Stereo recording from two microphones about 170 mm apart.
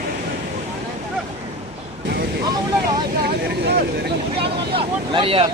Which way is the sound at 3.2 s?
70° right (ahead or behind).